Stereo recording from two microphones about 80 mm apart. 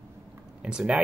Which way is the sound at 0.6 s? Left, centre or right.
Centre.